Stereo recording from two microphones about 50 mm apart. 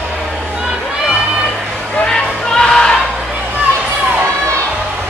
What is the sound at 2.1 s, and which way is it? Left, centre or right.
Music, centre.